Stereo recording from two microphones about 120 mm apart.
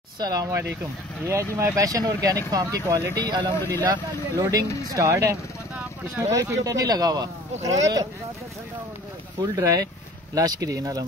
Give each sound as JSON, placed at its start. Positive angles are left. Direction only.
{"t": 0.2, "sound": "speech", "side_deg": -30}
{"t": 9.4, "sound": "speech", "side_deg": -30}